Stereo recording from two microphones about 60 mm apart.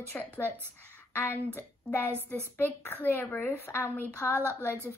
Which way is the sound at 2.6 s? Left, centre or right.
Left.